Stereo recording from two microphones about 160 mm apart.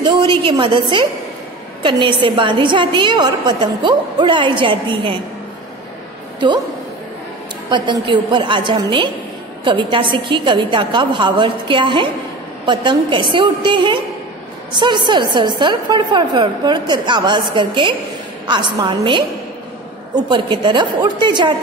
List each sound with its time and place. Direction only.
0.0 s a woman's voice: 30° right (ahead or behind)
7.7 s a woman's voice: 30° right (ahead or behind)
20.2 s a woman's voice: 30° right (ahead or behind)